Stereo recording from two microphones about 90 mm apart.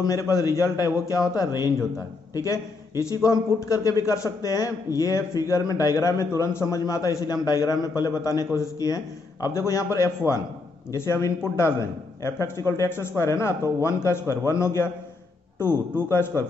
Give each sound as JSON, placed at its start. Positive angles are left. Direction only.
{"t": 0.0, "sound": "a man's voice", "side_deg": 40}
{"t": 16.0, "sound": "a man's voice", "side_deg": 25}